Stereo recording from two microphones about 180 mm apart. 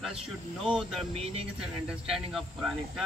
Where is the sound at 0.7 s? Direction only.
Centre (ahead or behind).